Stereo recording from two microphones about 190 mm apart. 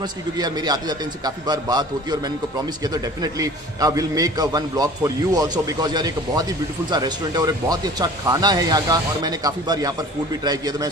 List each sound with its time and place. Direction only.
0.0 s speech: 20° right (ahead or behind)